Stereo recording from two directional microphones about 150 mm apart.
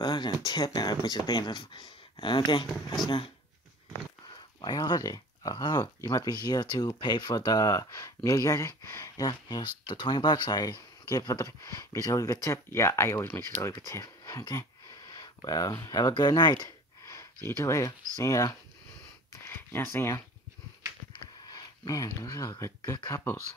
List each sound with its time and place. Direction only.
0.0 s speech: 30° left (ahead or behind)
2.6 s speech: centre (ahead or behind)
4.6 s speech: 30° left (ahead or behind)
21.1 s speech: 30° left (ahead or behind)